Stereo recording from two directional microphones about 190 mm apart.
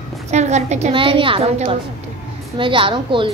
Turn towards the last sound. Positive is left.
turn(degrees=-25)  # may be behind; listen again after turning